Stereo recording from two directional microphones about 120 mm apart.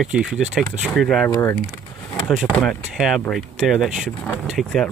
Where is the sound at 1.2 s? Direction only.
20° left (ahead or behind).